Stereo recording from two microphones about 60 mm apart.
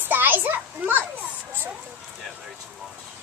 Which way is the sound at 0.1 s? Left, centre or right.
Right.